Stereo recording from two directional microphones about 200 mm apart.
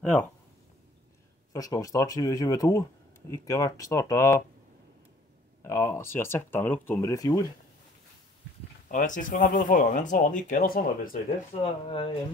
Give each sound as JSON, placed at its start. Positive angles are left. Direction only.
{"t": 0.0, "sound": "speech", "side_deg": 5}
{"t": 1.5, "sound": "speech", "side_deg": 15}
{"t": 5.6, "sound": "speech", "side_deg": 15}
{"t": 8.9, "sound": "speech", "side_deg": 40}
{"t": 11.6, "sound": "speech", "side_deg": 25}